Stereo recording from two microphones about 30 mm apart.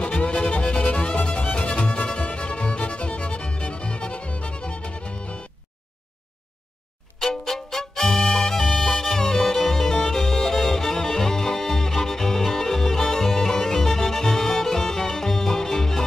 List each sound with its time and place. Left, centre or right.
0.0 s music: left
7.2 s violin: centre
8.4 s music: centre